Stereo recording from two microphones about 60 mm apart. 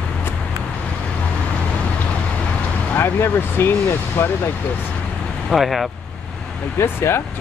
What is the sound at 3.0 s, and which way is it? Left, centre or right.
Vehicle, left.